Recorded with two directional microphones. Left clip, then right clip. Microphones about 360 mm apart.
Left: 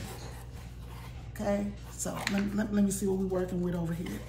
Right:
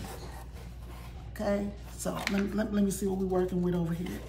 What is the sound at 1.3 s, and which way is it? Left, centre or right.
A woman's voice, centre.